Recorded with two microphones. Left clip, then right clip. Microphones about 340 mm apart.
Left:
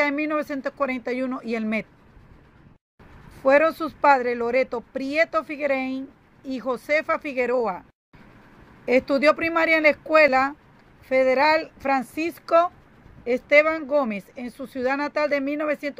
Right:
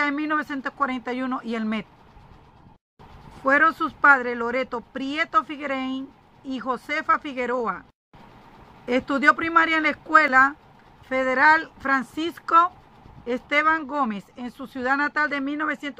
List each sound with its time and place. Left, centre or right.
0.0 s speech: centre
3.4 s speech: centre
8.8 s speech: centre